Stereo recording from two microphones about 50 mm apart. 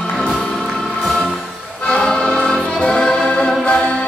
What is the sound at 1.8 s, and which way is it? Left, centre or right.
Music, centre.